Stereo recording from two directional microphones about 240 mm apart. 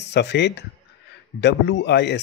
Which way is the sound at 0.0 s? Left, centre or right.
Left.